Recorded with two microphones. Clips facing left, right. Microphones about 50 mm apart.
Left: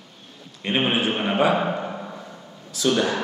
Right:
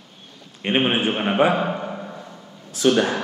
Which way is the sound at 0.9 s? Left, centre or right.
Right.